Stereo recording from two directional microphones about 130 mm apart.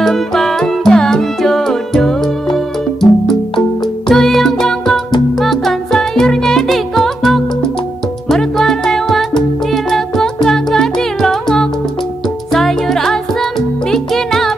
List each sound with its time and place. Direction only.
0.0 s music: centre (ahead or behind)
4.1 s music: centre (ahead or behind)